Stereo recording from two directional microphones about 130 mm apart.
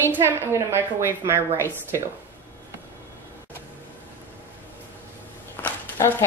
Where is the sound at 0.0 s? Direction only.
15° right (ahead or behind).